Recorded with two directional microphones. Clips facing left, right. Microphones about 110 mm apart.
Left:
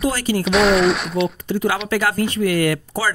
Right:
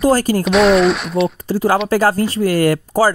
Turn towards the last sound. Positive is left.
turn(degrees=-40)  # may be behind; listen again after turning